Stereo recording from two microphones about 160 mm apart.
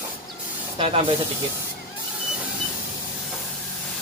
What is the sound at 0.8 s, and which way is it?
Speech, 35° right (ahead or behind).